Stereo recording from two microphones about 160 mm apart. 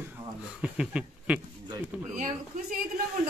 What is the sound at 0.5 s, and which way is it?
Speech, 5° right (ahead or behind).